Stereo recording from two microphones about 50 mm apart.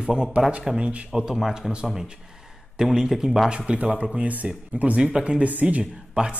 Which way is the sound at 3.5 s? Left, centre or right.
Right.